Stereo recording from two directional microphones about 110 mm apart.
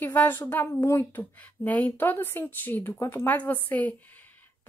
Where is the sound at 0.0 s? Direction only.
15° left (ahead or behind).